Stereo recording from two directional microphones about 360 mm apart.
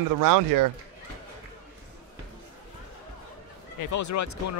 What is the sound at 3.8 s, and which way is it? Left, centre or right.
Speech, left.